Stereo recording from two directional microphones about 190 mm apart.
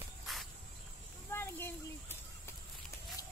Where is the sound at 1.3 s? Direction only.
10° left (ahead or behind).